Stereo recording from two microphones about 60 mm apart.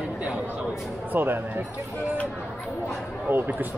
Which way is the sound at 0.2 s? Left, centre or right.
Centre.